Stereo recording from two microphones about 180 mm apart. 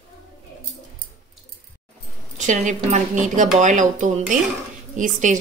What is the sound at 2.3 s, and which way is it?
Speech, 40° right (ahead or behind).